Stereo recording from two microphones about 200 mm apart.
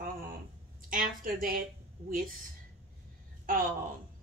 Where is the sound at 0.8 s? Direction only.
45° right (ahead or behind).